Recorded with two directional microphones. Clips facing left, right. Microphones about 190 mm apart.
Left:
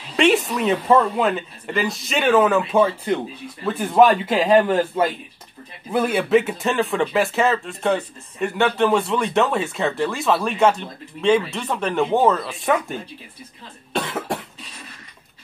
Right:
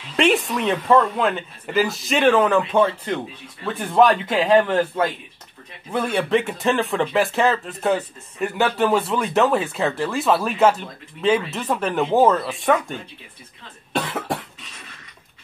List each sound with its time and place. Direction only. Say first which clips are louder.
0.1 s speech: left 1 dB; centre (ahead or behind)
1.7 s speech: right 3 dB; centre (ahead or behind)